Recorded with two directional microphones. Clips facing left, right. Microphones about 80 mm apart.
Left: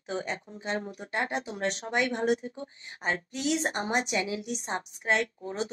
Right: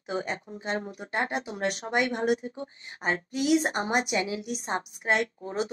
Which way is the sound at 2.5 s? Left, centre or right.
Right.